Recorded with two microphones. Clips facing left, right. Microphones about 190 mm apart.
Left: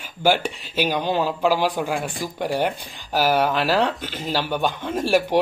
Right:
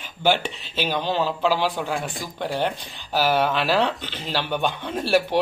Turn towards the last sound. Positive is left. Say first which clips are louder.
# left 2 dB
turn(degrees=10)  # may be behind; listen again after turning